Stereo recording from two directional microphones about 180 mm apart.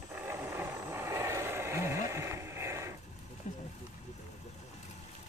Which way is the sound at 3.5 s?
45° left (ahead or behind).